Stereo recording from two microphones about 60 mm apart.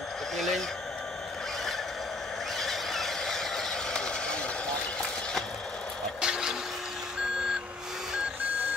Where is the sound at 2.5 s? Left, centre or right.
Centre.